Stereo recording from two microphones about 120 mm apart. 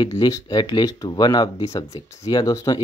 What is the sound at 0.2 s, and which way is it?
Speech, 35° left (ahead or behind).